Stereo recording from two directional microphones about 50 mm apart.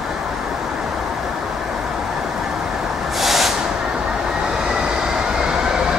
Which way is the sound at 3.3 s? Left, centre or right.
Centre.